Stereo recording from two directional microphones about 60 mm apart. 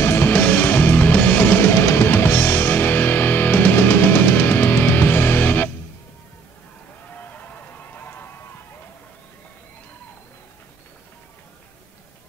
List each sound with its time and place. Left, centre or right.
0.0 s music: left
1.7 s music: left
7.1 s run: left